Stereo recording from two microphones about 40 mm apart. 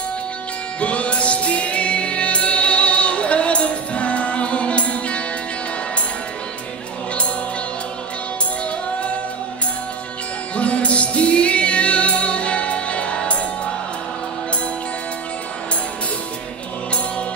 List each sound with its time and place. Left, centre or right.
0.7 s music: left
10.5 s music: left